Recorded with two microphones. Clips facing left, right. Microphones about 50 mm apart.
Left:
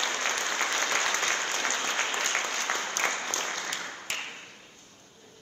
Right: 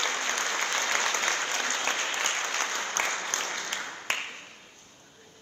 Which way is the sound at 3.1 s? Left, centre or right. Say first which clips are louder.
Left 1 dB; centre.